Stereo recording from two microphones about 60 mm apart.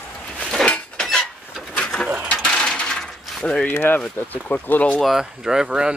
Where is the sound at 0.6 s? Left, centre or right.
Centre.